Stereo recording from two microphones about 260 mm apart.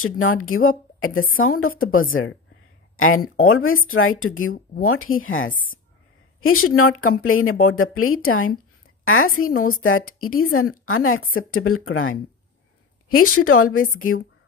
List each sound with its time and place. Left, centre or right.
0.0 s speech: left
5.5 s speech: left
6.4 s speech: left
13.4 s a woman's voice: left